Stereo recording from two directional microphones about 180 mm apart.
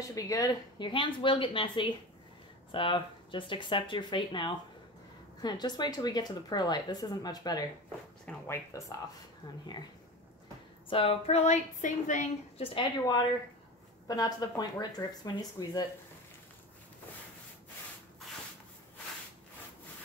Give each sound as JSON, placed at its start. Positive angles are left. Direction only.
{"t": 0.1, "sound": "speech", "side_deg": 20}
{"t": 9.4, "sound": "speech", "side_deg": 25}
{"t": 10.9, "sound": "a woman's voice", "side_deg": 30}
{"t": 14.0, "sound": "speech", "side_deg": 20}